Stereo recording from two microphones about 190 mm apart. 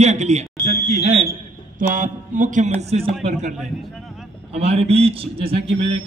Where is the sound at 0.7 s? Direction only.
35° right (ahead or behind).